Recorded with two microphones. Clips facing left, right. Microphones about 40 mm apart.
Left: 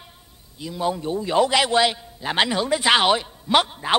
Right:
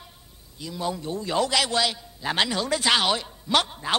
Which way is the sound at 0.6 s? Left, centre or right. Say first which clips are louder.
Left 5 dB; centre.